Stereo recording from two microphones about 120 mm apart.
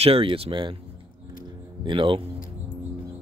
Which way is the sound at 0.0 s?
50° right (ahead or behind).